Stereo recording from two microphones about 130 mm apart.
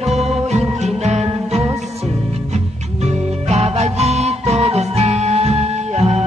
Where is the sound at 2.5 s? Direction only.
55° right (ahead or behind).